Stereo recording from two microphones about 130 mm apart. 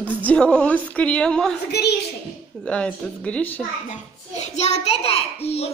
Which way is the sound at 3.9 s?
60° left (ahead or behind).